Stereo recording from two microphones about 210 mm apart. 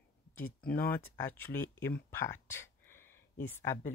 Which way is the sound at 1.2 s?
10° left (ahead or behind).